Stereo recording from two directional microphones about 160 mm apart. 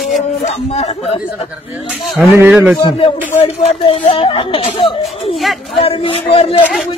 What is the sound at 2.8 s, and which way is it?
Speech, 30° left (ahead or behind).